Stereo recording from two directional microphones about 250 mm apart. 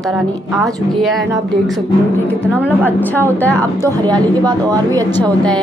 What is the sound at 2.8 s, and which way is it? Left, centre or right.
Speech, centre.